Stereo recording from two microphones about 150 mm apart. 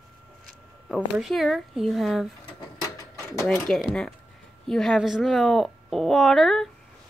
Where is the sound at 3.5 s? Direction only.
5° left (ahead or behind).